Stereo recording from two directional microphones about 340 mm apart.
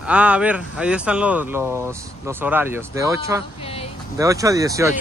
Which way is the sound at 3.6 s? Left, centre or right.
Centre.